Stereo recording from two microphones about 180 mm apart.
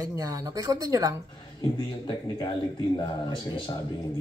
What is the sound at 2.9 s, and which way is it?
Speech, 25° left (ahead or behind).